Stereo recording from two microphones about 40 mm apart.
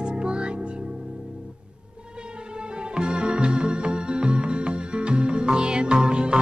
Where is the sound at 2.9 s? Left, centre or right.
Right.